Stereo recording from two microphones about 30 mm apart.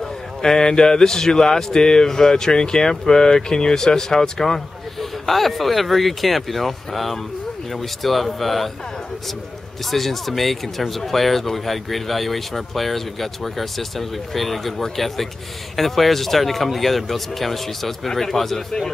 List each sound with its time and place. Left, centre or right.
0.0 s speech: centre
5.2 s speech: centre
9.8 s speech: centre